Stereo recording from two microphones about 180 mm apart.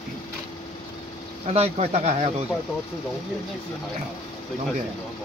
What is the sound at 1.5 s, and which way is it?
Speech, 35° right (ahead or behind).